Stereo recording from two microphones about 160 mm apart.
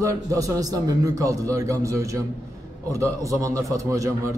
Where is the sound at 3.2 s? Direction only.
20° right (ahead or behind).